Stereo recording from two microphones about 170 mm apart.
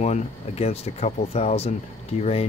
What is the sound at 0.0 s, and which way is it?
Speech, 40° left (ahead or behind).